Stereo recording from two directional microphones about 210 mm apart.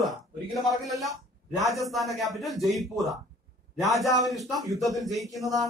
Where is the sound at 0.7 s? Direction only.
Centre (ahead or behind).